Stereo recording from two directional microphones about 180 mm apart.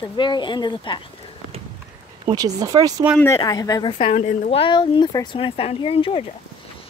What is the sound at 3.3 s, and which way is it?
Speech, 20° left (ahead or behind).